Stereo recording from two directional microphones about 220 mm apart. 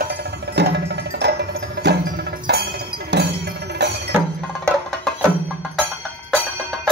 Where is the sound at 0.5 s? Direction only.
50° right (ahead or behind).